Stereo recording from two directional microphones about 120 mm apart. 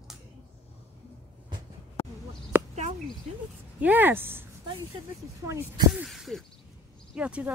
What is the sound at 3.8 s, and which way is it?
Speech, 15° right (ahead or behind).